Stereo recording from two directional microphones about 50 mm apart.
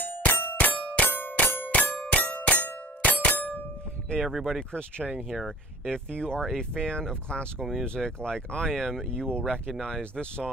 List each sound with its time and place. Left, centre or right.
0.0 s a sound: left
1.0 s music: left
1.7 s a sound: left
4.1 s speech: centre
4.7 s speech: centre
6.1 s speech: centre
6.4 s speech: centre